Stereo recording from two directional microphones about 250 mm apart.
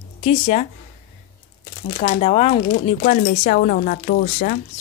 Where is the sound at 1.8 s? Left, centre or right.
Left.